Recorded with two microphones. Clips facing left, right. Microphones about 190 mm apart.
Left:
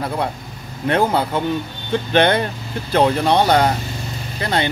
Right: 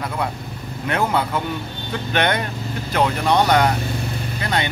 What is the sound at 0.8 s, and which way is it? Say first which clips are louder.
A man's voice: left 4 dB; 30° left (ahead or behind).